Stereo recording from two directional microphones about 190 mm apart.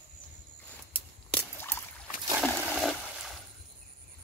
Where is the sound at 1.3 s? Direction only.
10° left (ahead or behind).